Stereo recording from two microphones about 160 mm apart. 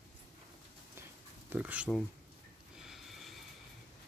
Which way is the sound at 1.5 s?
10° right (ahead or behind).